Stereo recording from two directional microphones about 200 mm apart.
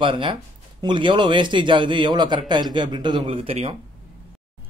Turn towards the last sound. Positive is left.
turn(degrees=-30)  # may be behind; listen again after turning